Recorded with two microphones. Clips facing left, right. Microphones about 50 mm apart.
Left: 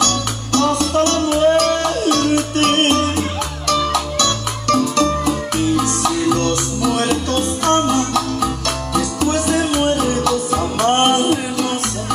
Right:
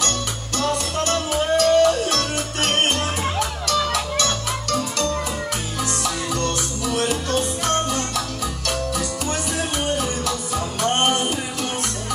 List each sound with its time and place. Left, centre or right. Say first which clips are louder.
0.0 s music: left 6 dB; left